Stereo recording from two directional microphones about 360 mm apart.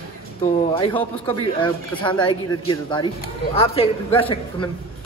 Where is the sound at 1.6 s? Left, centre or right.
Centre.